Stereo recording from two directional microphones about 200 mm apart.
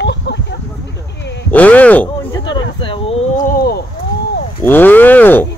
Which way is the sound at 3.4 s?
50° left (ahead or behind).